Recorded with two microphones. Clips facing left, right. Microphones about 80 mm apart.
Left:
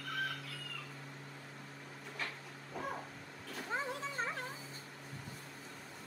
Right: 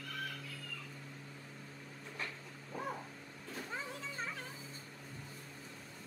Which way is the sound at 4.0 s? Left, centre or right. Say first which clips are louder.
Left 4 dB; left.